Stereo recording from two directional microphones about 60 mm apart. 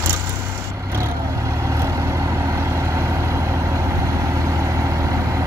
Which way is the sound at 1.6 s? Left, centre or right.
Right.